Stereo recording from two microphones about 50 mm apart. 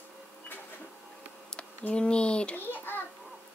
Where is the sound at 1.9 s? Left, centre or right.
Left.